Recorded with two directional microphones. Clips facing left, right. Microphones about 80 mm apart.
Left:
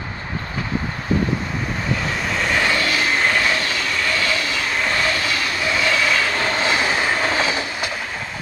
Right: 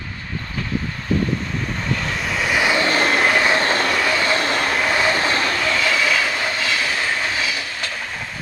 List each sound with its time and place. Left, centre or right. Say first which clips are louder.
1.9 s vehicle: left 1 dB; centre
2.8 s vehicle: right 3 dB; right
3.2 s train: right 2 dB; centre
3.5 s train: right 5 dB; right
3.9 s train: right 3 dB; centre
4.2 s train: right 3 dB; right
4.8 s train: right 1 dB; centre
5.1 s train: right 3 dB; right
5.9 s train: left 2 dB; centre
6.6 s train: left 3 dB; left
7.2 s train: left 4 dB; left